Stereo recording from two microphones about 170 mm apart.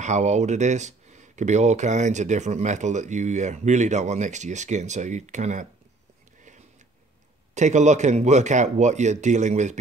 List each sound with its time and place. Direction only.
0.0 s speech: 45° right (ahead or behind)
7.5 s speech: 45° right (ahead or behind)